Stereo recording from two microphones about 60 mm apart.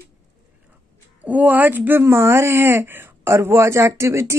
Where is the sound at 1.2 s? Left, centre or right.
Right.